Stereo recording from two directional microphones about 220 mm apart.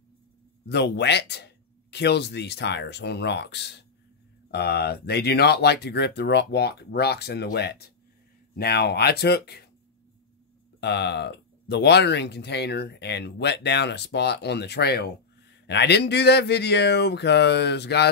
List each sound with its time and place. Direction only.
0.7 s speech: 50° left (ahead or behind)
10.8 s speech: 50° left (ahead or behind)